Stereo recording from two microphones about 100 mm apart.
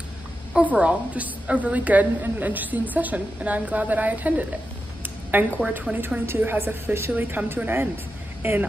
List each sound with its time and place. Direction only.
0.5 s a woman's voice: 10° right (ahead or behind)